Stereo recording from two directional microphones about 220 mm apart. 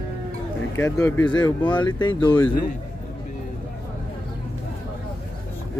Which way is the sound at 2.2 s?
10° left (ahead or behind).